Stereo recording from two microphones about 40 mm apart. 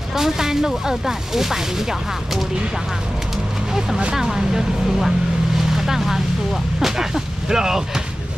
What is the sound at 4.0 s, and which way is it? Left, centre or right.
Speech, centre.